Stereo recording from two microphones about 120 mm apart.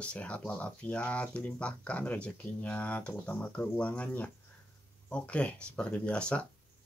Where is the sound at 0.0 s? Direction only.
10° left (ahead or behind).